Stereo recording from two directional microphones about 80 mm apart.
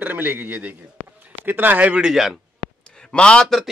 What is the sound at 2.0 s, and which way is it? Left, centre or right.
Speech, centre.